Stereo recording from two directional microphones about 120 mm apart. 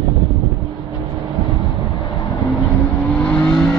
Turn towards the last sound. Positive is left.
turn(degrees=10)  # may be behind; listen again after turning